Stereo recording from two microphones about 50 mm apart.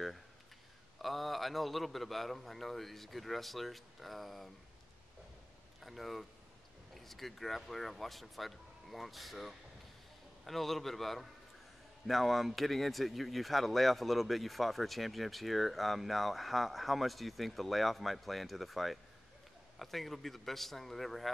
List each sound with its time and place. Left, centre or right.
1.0 s speech: centre
5.8 s speech: centre